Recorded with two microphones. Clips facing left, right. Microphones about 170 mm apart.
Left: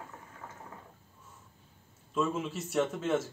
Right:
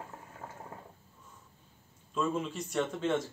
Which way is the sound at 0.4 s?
35° right (ahead or behind).